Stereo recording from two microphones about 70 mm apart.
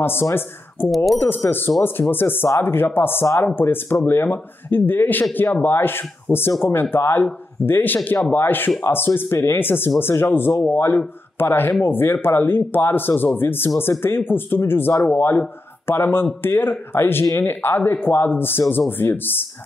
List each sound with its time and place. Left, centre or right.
0.0 s speech: left
0.9 s speech: centre
1.2 s speech: left
6.3 s speech: centre
6.6 s speech: left